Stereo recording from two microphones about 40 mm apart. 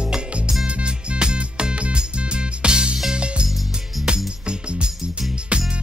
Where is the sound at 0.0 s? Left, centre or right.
Right.